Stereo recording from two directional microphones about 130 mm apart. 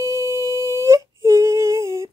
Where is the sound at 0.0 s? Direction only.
25° right (ahead or behind).